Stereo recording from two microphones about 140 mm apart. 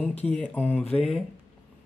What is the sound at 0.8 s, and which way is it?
Speech, 45° left (ahead or behind).